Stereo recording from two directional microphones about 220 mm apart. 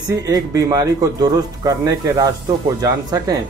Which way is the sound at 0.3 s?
15° right (ahead or behind).